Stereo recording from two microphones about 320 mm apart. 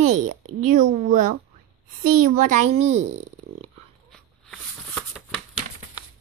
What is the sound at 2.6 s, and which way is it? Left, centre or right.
Speech, right.